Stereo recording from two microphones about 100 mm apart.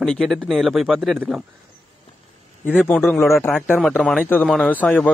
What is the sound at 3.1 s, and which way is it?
A man's voice, 25° left (ahead or behind).